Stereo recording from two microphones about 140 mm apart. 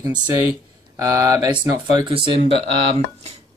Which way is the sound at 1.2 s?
20° right (ahead or behind).